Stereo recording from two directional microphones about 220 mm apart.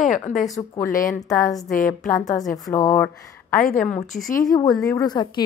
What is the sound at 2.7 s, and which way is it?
Speech, 15° left (ahead or behind).